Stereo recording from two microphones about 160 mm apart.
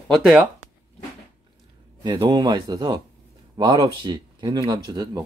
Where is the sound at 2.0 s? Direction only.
30° right (ahead or behind).